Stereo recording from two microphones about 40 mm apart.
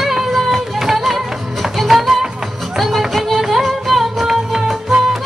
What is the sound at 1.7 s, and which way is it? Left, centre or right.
Music, centre.